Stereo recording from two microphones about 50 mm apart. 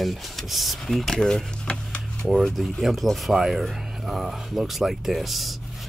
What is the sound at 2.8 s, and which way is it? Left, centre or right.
Speech, centre.